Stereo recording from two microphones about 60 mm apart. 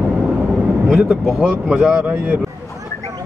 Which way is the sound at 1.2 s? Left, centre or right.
Centre.